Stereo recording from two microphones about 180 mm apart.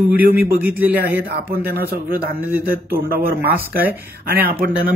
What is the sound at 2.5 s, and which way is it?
Speech, 55° right (ahead or behind).